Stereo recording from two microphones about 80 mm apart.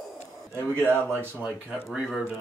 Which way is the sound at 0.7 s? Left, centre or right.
Right.